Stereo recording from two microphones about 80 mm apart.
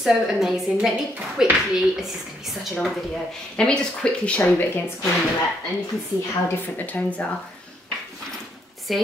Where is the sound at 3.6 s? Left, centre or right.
Centre.